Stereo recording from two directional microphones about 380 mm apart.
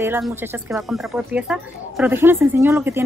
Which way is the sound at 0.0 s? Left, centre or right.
Centre.